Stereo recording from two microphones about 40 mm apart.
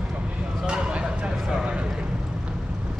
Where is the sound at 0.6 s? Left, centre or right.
Right.